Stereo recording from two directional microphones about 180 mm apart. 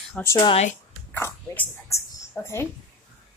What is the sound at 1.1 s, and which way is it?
Speech, 10° left (ahead or behind).